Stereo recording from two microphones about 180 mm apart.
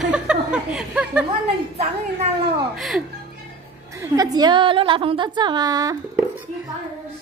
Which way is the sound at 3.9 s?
20° right (ahead or behind).